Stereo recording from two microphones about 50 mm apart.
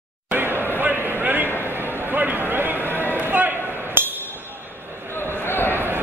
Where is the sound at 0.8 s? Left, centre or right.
Right.